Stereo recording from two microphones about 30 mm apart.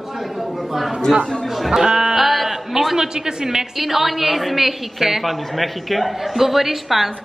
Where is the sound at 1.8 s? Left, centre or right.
Right.